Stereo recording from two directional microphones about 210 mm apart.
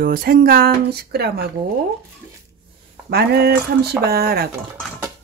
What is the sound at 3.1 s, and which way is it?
Speech, 50° right (ahead or behind).